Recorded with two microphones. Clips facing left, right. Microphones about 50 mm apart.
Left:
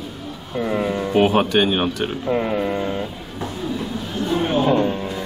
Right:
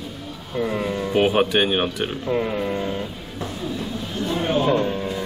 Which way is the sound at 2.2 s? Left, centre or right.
Centre.